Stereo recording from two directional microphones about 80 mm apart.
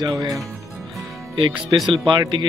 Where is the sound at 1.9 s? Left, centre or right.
Right.